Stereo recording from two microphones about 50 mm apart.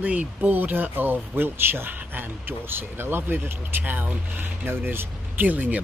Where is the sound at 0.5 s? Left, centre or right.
Right.